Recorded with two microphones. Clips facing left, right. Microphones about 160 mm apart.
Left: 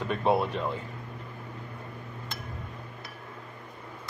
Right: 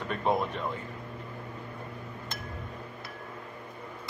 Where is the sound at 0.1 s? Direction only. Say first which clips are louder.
Left 3 dB; 10° left (ahead or behind).